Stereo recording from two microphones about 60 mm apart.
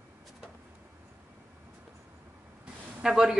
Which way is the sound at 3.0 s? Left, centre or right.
Centre.